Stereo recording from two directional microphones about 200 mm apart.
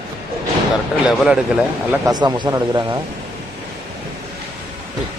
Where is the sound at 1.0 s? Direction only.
5° right (ahead or behind).